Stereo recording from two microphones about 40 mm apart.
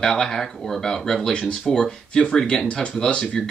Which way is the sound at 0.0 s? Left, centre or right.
Centre.